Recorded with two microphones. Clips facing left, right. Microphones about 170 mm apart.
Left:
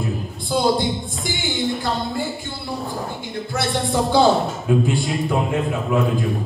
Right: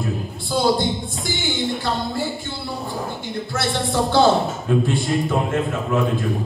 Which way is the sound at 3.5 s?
Centre (ahead or behind).